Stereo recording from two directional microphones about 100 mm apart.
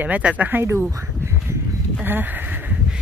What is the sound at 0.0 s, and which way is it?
Speech, 15° right (ahead or behind).